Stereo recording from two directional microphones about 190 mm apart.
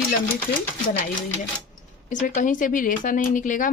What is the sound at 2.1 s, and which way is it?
Speech, 40° left (ahead or behind).